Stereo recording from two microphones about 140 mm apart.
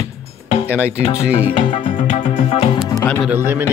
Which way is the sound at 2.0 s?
60° left (ahead or behind).